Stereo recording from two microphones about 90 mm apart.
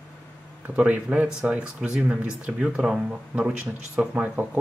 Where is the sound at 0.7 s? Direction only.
15° right (ahead or behind).